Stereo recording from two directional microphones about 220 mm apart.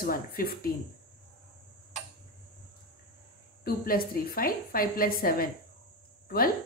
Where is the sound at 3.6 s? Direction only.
40° left (ahead or behind).